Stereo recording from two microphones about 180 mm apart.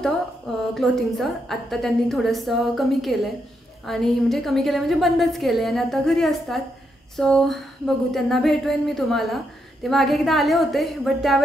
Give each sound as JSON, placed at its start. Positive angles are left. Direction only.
{"t": 0.7, "sound": "a woman's voice", "side_deg": 0}